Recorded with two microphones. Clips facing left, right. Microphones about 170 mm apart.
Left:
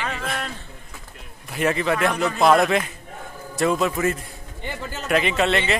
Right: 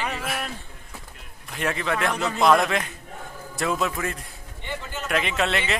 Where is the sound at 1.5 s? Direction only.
5° left (ahead or behind).